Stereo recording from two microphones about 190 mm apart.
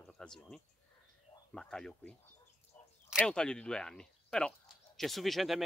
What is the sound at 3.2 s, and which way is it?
Speech, 5° left (ahead or behind).